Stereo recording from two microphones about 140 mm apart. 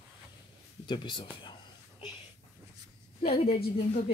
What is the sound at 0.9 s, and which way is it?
Speech, 35° left (ahead or behind).